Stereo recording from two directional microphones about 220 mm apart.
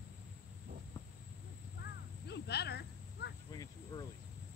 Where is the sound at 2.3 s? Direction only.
50° left (ahead or behind).